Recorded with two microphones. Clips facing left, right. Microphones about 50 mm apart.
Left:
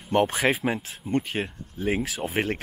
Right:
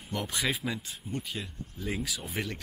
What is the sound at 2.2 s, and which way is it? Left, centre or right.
Speech, left.